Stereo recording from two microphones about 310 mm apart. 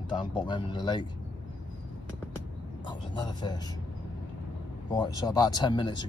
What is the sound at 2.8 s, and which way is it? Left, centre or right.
Speech, centre.